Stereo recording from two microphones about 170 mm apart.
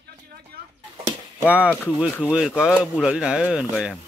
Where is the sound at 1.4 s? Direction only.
5° right (ahead or behind).